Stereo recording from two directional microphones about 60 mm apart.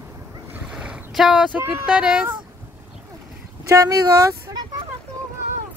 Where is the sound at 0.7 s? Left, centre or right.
Centre.